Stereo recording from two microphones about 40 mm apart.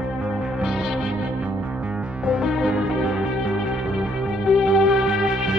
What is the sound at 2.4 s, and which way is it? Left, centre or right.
Music, centre.